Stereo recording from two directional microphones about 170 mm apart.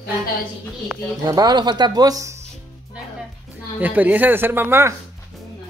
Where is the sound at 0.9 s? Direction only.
Centre (ahead or behind).